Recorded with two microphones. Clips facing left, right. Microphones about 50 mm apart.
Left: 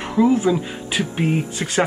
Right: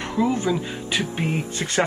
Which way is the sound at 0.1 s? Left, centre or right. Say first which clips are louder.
Left 6 dB; centre.